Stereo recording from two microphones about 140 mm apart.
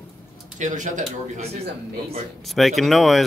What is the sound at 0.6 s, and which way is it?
Speech, 65° right (ahead or behind).